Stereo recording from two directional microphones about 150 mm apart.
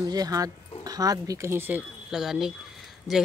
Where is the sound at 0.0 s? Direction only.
25° right (ahead or behind).